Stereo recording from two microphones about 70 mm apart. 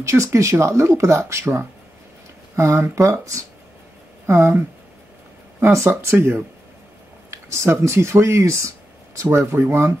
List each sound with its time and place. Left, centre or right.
0.0 s speech: right
4.3 s speech: right
5.6 s speech: right